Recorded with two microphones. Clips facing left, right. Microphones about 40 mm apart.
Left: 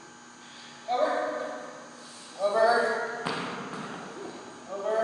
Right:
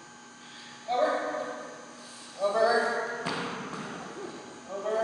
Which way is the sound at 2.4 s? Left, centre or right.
Centre.